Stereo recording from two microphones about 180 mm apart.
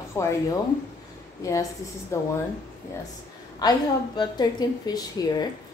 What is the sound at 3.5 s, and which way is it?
A woman's voice, 20° left (ahead or behind).